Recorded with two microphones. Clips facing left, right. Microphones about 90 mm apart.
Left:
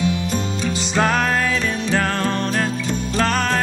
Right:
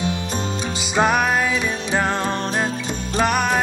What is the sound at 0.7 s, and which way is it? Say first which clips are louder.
Music: right 1 dB; 15° right (ahead or behind).